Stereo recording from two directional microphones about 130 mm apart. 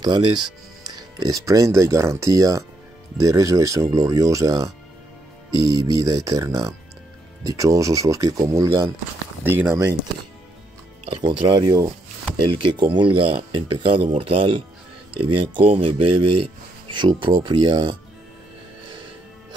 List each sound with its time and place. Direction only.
0.0 s speech: 35° right (ahead or behind); by 9.8 s 15° right (ahead or behind)
11.1 s speech: 45° right (ahead or behind)